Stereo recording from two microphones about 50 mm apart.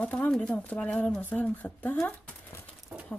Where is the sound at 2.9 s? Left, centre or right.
Right.